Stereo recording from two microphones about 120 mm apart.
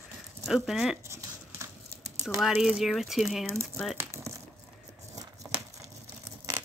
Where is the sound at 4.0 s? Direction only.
25° right (ahead or behind).